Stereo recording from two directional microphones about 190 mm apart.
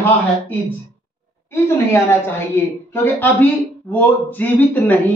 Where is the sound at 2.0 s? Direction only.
15° left (ahead or behind).